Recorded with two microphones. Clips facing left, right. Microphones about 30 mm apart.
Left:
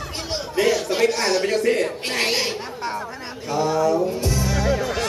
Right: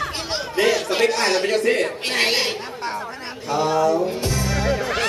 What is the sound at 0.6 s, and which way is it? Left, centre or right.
Speech, right.